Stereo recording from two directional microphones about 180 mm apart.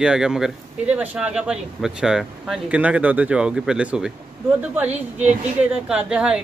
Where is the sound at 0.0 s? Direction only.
5° right (ahead or behind).